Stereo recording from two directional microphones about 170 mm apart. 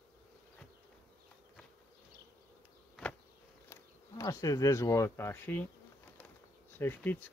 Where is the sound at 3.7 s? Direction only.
20° left (ahead or behind).